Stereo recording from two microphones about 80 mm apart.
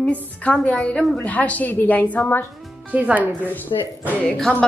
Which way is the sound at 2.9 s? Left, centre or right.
Centre.